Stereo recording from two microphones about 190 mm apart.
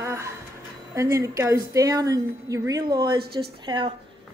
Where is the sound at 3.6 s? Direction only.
25° right (ahead or behind).